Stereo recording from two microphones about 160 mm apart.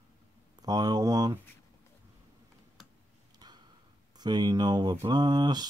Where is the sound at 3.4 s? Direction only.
25° right (ahead or behind).